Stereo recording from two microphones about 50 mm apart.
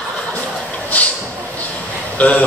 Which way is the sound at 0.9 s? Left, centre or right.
Left.